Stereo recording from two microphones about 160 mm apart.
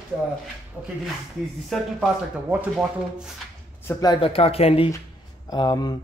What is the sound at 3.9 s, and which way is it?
Speech, 25° left (ahead or behind).